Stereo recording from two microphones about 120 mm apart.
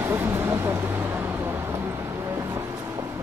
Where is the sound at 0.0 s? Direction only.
20° right (ahead or behind).